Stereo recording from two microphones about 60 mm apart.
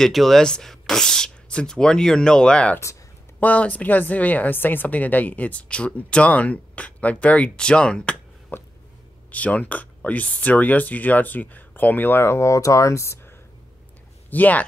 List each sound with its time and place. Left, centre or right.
0.0 s speech: centre
8.5 s a sound: left
9.3 s speech: left
14.3 s speech: left